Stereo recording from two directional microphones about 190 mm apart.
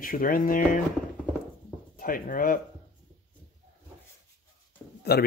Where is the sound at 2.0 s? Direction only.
45° left (ahead or behind).